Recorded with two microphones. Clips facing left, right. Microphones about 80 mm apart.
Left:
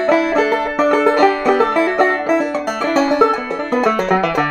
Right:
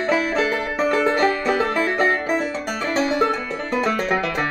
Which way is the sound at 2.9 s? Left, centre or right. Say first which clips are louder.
Left 6 dB; left.